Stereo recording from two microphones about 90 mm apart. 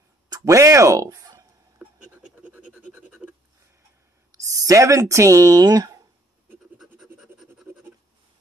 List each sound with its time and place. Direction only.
0.3 s speech: 35° right (ahead or behind)
1.8 s a sound: 15° right (ahead or behind)
4.3 s speech: 35° right (ahead or behind)
7.2 s scratch: 5° right (ahead or behind)